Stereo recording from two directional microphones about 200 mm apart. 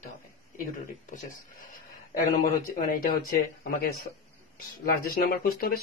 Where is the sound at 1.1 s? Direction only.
40° left (ahead or behind).